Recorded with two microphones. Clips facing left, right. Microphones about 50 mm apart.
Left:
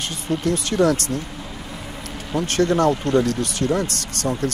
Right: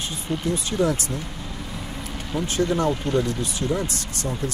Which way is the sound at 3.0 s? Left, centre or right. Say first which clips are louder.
Left 4 dB; centre.